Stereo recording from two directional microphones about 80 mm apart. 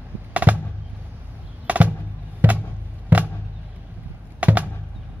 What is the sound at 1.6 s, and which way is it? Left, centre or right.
Music, centre.